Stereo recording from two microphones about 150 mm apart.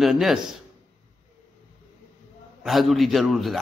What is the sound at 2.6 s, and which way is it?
A man's voice, centre (ahead or behind).